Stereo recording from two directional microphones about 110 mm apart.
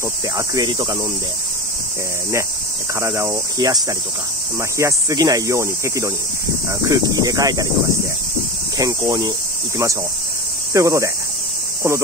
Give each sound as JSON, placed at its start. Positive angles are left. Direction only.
{"t": 0.4, "sound": "speech", "side_deg": -40}
{"t": 3.0, "sound": "speech", "side_deg": -25}
{"t": 3.5, "sound": "speech", "side_deg": -35}
{"t": 10.7, "sound": "speech", "side_deg": -30}